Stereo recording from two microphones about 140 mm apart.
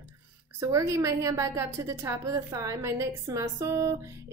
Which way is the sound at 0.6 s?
20° right (ahead or behind).